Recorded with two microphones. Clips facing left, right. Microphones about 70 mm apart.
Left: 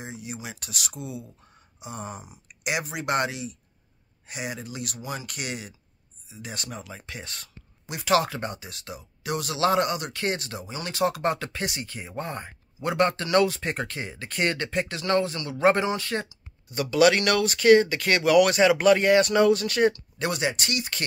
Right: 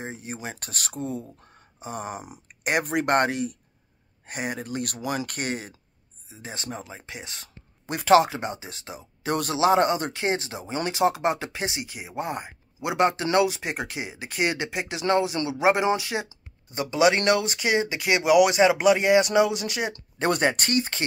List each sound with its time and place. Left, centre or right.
0.0 s speech: right
2.0 s speech: right
2.4 s speech: right
7.8 s a sound: right
8.1 s speech: right
9.3 s speech: right
9.8 s speech: right; by 16.3 s centre
16.3 s speech: right
20.2 s speech: right